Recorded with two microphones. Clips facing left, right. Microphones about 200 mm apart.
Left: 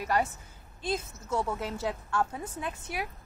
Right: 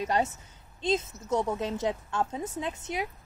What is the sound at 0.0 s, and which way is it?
A woman's voice, 25° right (ahead or behind).